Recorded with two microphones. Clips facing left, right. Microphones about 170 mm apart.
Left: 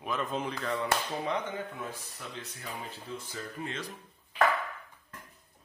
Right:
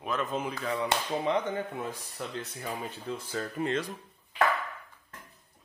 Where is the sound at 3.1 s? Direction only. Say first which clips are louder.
Right 8 dB; 70° right (ahead or behind).